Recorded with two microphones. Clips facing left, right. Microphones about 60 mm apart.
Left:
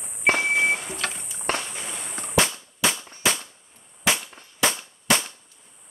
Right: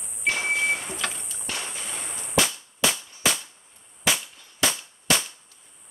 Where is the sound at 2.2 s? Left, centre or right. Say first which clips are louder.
Left 2 dB; left.